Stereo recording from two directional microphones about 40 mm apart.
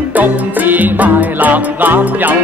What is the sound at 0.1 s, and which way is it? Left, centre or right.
Music, right.